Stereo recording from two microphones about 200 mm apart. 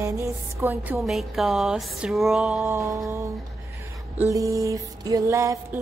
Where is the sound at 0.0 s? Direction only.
15° right (ahead or behind).